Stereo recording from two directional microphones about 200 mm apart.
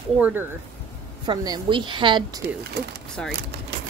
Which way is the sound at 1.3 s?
20° right (ahead or behind).